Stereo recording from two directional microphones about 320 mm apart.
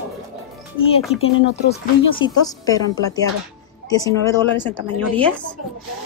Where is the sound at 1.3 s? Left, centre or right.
Left.